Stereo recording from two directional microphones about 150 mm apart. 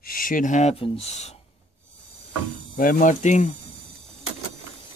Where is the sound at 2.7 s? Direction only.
70° left (ahead or behind); by 3.4 s 55° left (ahead or behind).